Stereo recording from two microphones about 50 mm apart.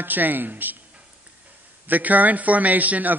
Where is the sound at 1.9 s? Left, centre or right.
Right.